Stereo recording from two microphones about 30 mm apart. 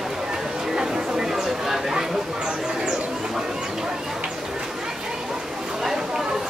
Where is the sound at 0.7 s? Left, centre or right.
Right.